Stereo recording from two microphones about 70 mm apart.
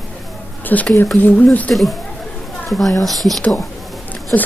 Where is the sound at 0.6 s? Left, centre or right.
Left.